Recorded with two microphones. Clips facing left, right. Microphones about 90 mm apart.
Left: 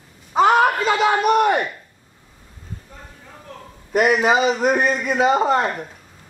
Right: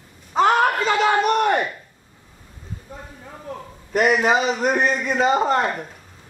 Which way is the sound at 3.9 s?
5° left (ahead or behind).